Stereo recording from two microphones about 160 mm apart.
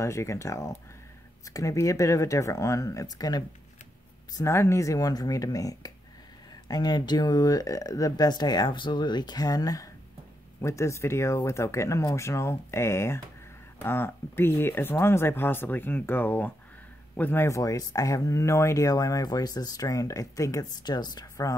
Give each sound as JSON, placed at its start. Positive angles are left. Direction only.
{"t": 0.0, "sound": "speech", "side_deg": 20}